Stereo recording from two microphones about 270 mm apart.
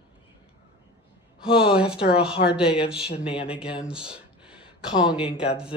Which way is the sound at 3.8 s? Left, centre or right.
Centre.